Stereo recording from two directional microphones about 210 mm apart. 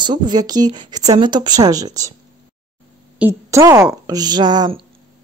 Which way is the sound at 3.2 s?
15° right (ahead or behind).